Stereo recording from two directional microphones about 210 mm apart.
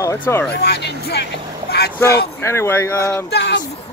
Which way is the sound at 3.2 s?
55° left (ahead or behind).